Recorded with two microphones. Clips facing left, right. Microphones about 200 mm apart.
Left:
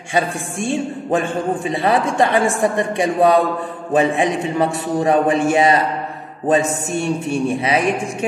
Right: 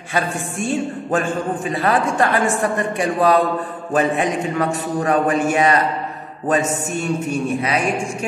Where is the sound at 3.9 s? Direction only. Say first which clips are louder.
Left 2 dB; 25° left (ahead or behind).